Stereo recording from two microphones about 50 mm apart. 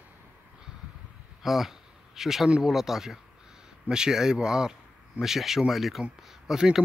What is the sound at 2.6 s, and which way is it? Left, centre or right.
Speech, centre.